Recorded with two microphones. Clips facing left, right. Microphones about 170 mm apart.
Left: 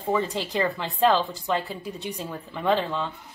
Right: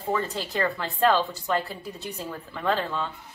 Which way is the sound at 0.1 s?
15° left (ahead or behind).